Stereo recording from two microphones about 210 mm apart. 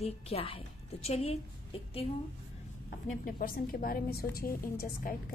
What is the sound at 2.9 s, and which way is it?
A woman's voice, 45° left (ahead or behind).